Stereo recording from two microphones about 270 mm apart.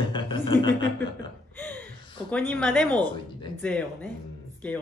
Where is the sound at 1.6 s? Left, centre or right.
Centre.